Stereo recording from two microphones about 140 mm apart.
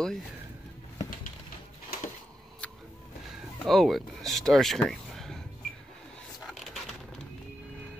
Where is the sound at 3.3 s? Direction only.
Centre (ahead or behind).